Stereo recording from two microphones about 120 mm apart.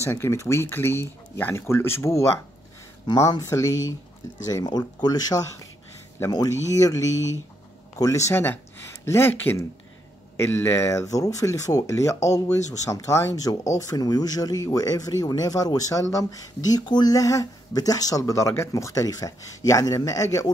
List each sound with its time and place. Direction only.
0.0 s speech: 20° left (ahead or behind)